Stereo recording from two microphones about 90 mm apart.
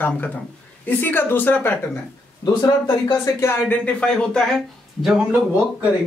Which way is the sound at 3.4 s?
30° left (ahead or behind).